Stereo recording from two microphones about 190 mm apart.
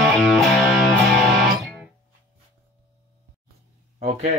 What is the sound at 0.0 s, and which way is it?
Music, centre (ahead or behind).